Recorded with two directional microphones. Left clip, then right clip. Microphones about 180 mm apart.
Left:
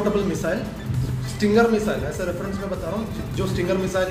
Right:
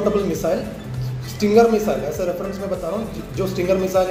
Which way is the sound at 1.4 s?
5° left (ahead or behind).